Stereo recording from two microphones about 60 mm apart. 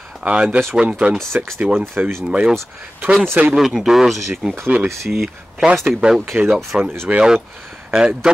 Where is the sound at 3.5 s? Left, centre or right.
Centre.